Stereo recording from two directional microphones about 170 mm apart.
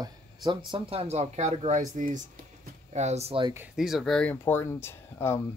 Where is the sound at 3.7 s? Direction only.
Centre (ahead or behind); by 5.4 s 15° left (ahead or behind).